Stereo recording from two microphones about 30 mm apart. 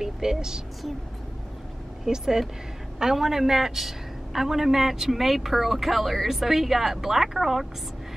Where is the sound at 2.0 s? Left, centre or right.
Centre.